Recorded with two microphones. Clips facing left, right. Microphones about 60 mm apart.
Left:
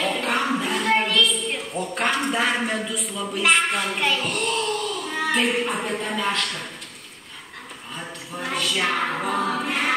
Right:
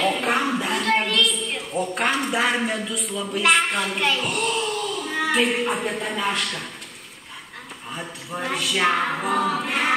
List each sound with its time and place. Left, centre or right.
0.0 s a sound: centre
0.8 s child singing: centre
1.8 s a man's voice: centre
8.4 s speech: centre
9.1 s choir: centre